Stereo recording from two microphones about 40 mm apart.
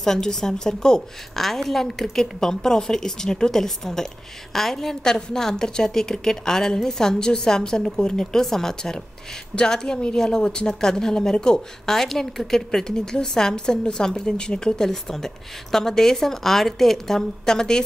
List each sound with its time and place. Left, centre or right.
0.0 s a woman's voice: centre